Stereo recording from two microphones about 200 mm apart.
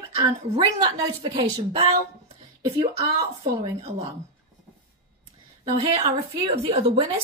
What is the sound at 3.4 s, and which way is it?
Speech, 30° right (ahead or behind).